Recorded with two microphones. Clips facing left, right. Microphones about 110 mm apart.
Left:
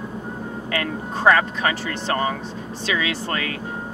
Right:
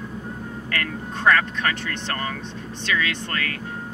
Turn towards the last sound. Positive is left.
turn(degrees=20)  # may be behind; listen again after turning